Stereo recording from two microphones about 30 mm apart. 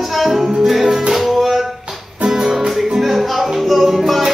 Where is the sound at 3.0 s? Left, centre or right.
Centre.